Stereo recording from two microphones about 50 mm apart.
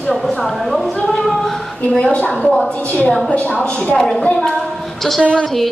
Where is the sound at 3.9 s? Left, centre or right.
Centre.